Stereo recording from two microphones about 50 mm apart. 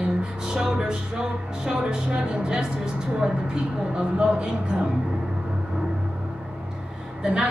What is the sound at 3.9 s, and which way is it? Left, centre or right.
Speech, centre.